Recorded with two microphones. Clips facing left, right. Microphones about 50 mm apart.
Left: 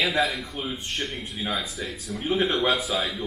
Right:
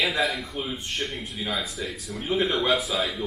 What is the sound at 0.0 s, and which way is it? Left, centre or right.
A man's voice, centre.